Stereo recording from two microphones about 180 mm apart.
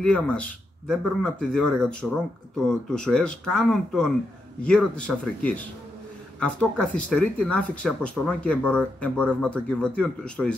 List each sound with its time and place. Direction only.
0.0 s speech: 5° left (ahead or behind)